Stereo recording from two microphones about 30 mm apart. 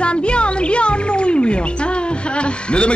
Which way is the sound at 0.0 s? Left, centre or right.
Left.